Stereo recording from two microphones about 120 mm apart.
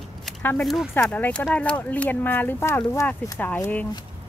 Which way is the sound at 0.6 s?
Centre (ahead or behind).